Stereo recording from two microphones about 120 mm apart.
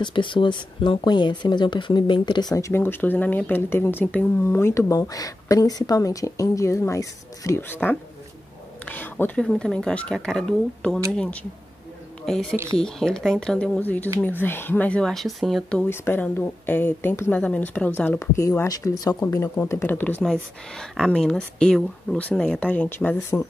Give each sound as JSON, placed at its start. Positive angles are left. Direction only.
{"t": 0.0, "sound": "speech", "side_deg": 45}
{"t": 2.5, "sound": "speech", "side_deg": 20}
{"t": 15.9, "sound": "speech", "side_deg": 20}
{"t": 18.6, "sound": "speech", "side_deg": 25}
{"t": 20.7, "sound": "speech", "side_deg": 5}